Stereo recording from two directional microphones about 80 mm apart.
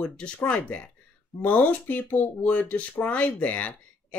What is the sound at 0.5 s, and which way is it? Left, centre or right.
Speech, centre.